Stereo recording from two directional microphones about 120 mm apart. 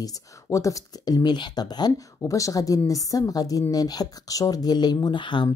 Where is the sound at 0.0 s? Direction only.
25° left (ahead or behind).